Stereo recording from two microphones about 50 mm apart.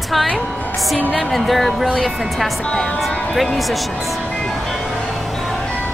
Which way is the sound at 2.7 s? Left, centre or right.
Centre.